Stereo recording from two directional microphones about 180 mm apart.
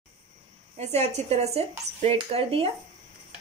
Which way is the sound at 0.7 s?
35° right (ahead or behind).